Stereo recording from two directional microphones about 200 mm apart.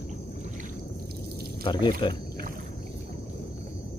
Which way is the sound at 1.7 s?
25° left (ahead or behind).